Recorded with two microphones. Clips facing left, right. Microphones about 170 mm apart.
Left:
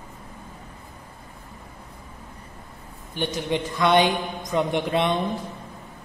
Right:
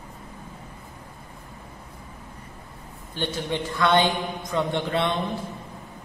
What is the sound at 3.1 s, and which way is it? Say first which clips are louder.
A man's voice: left 2 dB; 15° left (ahead or behind).